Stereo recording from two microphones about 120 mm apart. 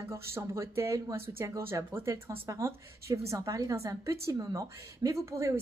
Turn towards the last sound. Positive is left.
turn(degrees=-25)  # may be behind; listen again after turning